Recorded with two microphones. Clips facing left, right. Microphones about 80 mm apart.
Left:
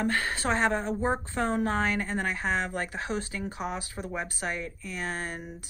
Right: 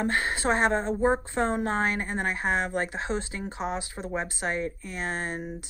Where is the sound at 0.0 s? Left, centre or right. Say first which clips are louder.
Right 2 dB; right.